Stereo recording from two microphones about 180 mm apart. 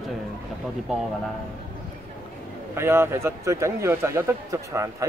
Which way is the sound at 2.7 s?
15° right (ahead or behind).